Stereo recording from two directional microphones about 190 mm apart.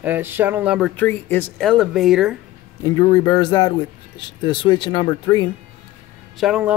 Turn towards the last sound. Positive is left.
turn(degrees=-5)  # may be behind; listen again after turning